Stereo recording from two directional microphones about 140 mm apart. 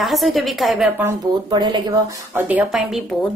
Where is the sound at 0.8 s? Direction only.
15° right (ahead or behind).